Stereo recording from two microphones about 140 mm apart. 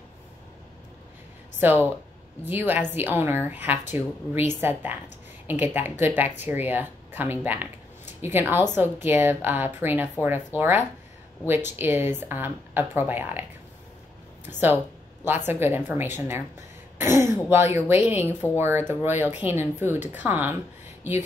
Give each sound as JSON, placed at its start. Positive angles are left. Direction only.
{"t": 1.6, "sound": "speech", "side_deg": -15}